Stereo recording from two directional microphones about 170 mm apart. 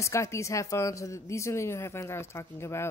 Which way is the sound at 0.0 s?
15° left (ahead or behind).